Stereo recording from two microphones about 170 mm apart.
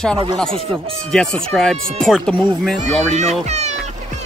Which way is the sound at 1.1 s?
5° left (ahead or behind).